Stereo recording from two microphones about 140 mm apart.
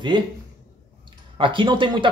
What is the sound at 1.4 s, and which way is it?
Speech, 35° right (ahead or behind).